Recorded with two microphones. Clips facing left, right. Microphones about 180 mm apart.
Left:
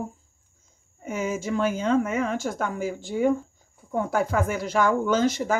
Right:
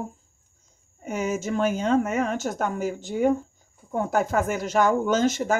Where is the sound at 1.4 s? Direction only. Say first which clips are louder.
Even; 50° right (ahead or behind).